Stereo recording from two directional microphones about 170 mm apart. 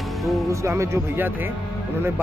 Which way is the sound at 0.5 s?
15° right (ahead or behind).